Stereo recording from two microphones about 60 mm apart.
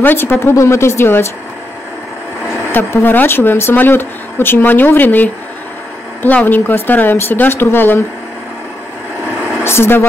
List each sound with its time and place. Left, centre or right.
0.0 s speech: left
2.5 s speech: left
9.2 s a sound: right
9.6 s speech: left